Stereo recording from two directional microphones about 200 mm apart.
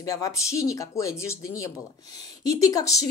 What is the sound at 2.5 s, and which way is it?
Speech, 15° left (ahead or behind).